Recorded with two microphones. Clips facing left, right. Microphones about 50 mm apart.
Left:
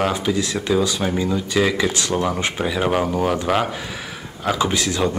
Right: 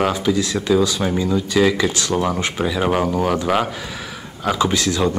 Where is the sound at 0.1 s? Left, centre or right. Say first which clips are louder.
Right 2 dB; left.